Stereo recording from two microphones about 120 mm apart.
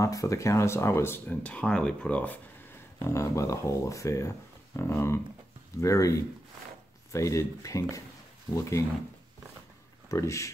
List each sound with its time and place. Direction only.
0.0 s speech: 30° left (ahead or behind); by 2.4 s 10° left (ahead or behind)
3.0 s speech: 25° left (ahead or behind)
10.0 s speech: 25° left (ahead or behind)